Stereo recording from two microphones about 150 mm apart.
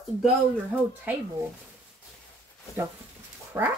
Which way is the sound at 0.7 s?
10° right (ahead or behind).